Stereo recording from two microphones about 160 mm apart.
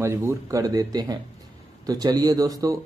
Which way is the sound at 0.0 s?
15° right (ahead or behind).